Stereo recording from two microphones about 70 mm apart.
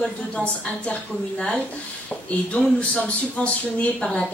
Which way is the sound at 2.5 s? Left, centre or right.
Centre.